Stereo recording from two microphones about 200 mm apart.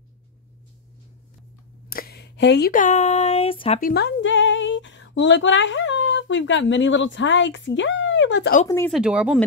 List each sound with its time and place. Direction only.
1.9 s a sound: 50° left (ahead or behind)
2.7 s speech: 40° left (ahead or behind)
3.8 s speech: 55° left (ahead or behind)
8.6 s speech: 10° left (ahead or behind)
8.9 s speech: 5° right (ahead or behind)